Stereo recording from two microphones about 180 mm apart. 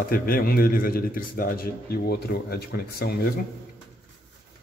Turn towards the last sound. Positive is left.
turn(degrees=60)  # may be behind; listen again after turning